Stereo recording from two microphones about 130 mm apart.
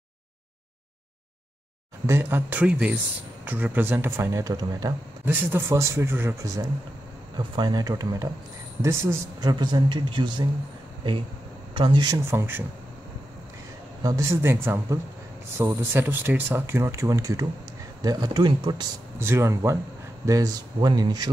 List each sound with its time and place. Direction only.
2.0 s speech: 20° right (ahead or behind)
5.2 s speech: 15° right (ahead or behind)
9.4 s speech: 35° right (ahead or behind)
11.7 s speech: 40° right (ahead or behind)
12.3 s speech: 15° right (ahead or behind)
14.0 s speech: 20° right (ahead or behind)
19.1 s speech: 20° right (ahead or behind)